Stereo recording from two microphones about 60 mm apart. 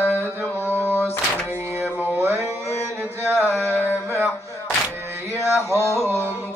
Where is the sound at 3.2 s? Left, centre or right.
Right.